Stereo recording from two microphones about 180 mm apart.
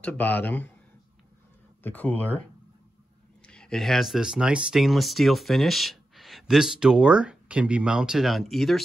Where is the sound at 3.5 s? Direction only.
5° left (ahead or behind).